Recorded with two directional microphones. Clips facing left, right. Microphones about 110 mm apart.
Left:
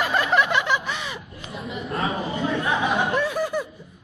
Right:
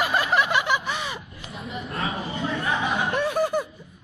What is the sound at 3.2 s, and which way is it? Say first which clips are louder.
Laughter: right 2 dB; 55° right (ahead or behind).